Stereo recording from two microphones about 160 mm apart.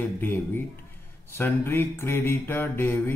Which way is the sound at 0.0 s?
15° left (ahead or behind).